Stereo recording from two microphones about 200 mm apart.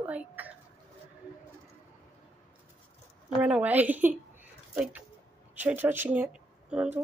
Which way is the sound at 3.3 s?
5° right (ahead or behind).